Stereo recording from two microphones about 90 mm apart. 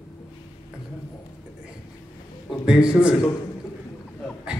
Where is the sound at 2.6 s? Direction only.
10° right (ahead or behind).